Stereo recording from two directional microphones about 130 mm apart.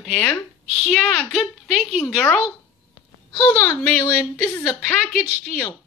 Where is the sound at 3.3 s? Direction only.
25° left (ahead or behind).